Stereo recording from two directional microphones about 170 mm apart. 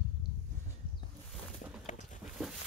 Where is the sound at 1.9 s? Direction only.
45° left (ahead or behind).